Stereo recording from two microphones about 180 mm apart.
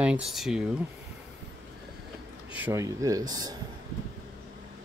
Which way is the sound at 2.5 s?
10° right (ahead or behind).